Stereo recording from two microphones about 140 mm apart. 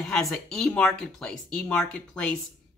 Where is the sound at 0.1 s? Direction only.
Centre (ahead or behind).